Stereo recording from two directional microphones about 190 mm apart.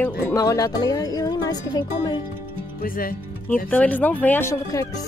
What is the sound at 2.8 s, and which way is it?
Speech, 50° left (ahead or behind).